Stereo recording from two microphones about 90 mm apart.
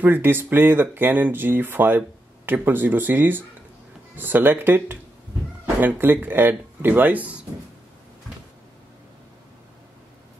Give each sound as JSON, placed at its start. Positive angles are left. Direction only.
{"t": 0.0, "sound": "speech", "side_deg": -25}